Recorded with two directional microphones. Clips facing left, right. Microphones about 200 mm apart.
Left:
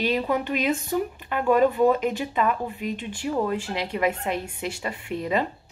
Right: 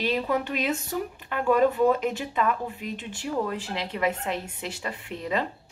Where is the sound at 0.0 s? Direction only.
Centre (ahead or behind).